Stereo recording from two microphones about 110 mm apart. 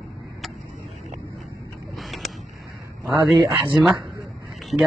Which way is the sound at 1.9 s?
Centre (ahead or behind).